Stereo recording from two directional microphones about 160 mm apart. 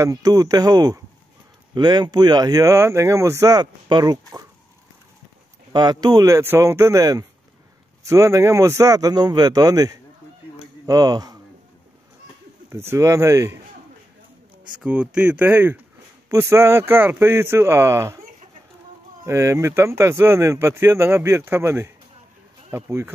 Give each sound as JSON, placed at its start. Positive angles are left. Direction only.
{"t": 0.0, "sound": "speech", "side_deg": -20}
{"t": 5.7, "sound": "speech", "side_deg": -25}
{"t": 12.6, "sound": "speech", "side_deg": -15}
{"t": 14.8, "sound": "speech", "side_deg": -5}
{"t": 19.2, "sound": "speech", "side_deg": -15}